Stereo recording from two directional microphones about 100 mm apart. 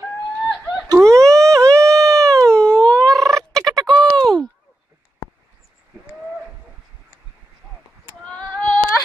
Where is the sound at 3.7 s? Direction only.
45° right (ahead or behind).